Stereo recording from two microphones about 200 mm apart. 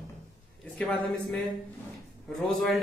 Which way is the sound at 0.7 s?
5° left (ahead or behind).